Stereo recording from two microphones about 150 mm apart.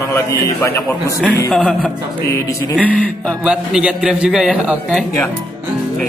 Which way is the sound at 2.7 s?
10° left (ahead or behind).